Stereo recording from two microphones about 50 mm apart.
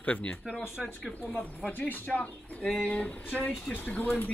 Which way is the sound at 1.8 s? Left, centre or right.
Left.